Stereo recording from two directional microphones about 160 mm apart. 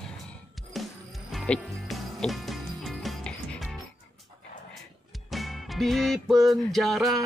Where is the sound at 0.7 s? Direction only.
Centre (ahead or behind).